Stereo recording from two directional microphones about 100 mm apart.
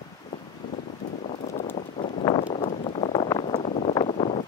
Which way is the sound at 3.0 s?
55° left (ahead or behind).